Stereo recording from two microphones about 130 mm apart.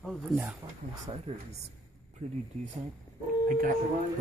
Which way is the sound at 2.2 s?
60° right (ahead or behind).